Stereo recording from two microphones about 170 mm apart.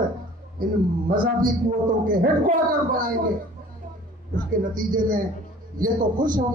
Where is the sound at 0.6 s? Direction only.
55° right (ahead or behind).